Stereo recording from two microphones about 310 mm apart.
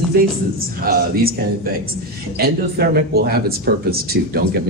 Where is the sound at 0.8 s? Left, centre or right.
Right.